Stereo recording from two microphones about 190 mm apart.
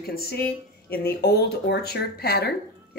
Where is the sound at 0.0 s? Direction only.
55° left (ahead or behind).